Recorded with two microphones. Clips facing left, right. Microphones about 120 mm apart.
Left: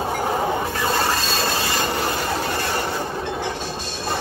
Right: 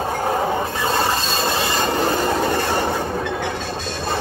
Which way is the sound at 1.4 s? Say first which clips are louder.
Right 2 dB; 25° right (ahead or behind).